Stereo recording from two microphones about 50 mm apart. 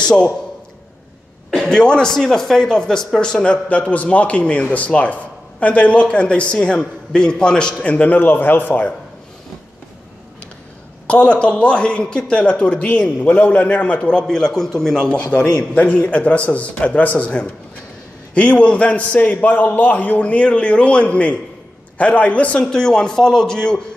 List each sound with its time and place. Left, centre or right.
1.5 s a man's voice: centre
7.9 s speech: left
11.1 s a man's voice: left
14.2 s speech: centre
15.3 s a man's voice: left
22.7 s speech: centre